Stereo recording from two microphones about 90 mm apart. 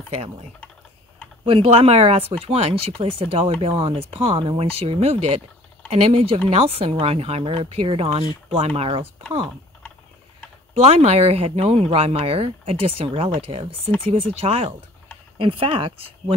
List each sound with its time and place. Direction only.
1.4 s speech: 90° right
3.6 s speech: 75° right (ahead or behind); by 9.0 s 90° right
11.2 s speech: 90° right